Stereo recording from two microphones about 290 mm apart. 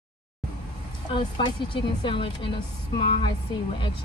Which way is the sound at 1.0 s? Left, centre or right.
Centre.